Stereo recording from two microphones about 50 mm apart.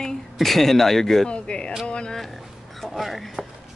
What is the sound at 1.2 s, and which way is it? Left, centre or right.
Speech, centre.